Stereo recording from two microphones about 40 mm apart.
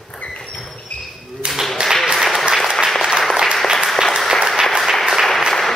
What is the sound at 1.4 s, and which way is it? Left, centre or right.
Clapping, right.